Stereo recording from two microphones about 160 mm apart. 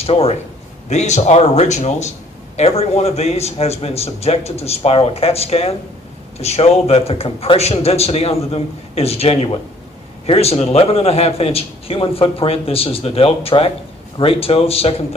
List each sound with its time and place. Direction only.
0.0 s a man's voice: 40° left (ahead or behind)